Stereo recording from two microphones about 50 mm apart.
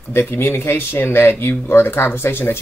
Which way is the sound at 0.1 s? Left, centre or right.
Left.